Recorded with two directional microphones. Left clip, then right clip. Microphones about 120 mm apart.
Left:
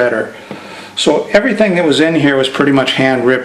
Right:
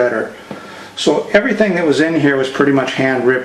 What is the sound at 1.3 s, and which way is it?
Speech, 20° left (ahead or behind).